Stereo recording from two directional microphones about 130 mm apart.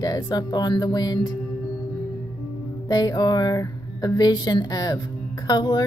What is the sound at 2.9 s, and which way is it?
A woman's voice, 30° left (ahead or behind).